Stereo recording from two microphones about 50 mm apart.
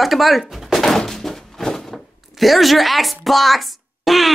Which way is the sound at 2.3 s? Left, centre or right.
Centre.